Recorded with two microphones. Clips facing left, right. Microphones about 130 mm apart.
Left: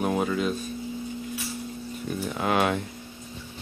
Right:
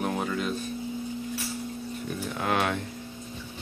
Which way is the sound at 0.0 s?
5° left (ahead or behind).